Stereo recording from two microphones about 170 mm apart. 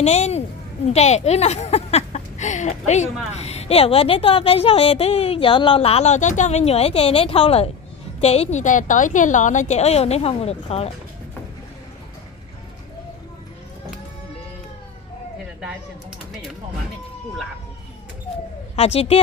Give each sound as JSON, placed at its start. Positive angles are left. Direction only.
{"t": 0.0, "sound": "a woman's voice", "side_deg": 40}
{"t": 18.9, "sound": "a woman's voice", "side_deg": 35}